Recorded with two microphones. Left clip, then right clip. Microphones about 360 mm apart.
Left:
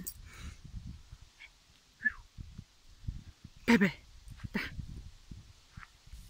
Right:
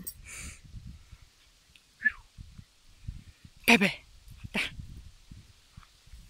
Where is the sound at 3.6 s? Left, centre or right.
Centre.